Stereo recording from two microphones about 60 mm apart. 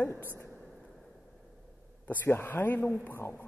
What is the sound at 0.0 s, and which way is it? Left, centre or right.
Speech, left.